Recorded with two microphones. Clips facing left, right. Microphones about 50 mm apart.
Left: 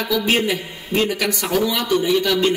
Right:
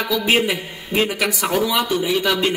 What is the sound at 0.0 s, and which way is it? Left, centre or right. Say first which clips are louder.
A man's voice: right 1 dB; centre.